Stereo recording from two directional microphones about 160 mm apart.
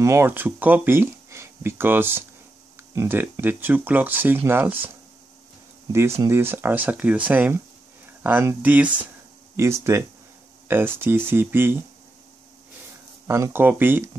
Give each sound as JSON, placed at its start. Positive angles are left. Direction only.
{"t": 0.0, "sound": "speech", "side_deg": -15}
{"t": 13.3, "sound": "speech", "side_deg": -15}